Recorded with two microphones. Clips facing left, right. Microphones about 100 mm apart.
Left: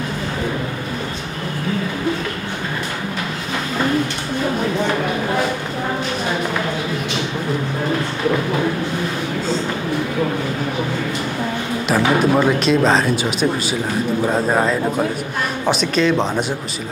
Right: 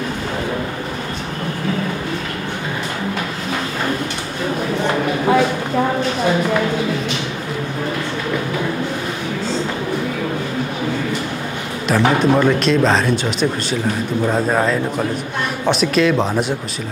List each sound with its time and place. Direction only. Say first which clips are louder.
11.9 s speech: right 1 dB; 5° left (ahead or behind)